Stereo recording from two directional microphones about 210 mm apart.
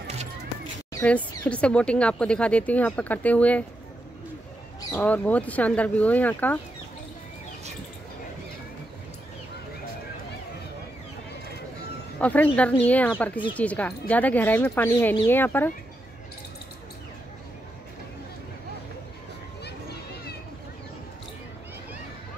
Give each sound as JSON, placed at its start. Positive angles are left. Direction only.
{"t": 1.0, "sound": "speech", "side_deg": 5}
{"t": 4.9, "sound": "speech", "side_deg": 5}
{"t": 12.2, "sound": "speech", "side_deg": 5}
{"t": 19.6, "sound": "a sound", "side_deg": 50}